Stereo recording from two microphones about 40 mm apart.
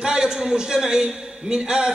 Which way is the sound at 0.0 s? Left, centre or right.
Centre.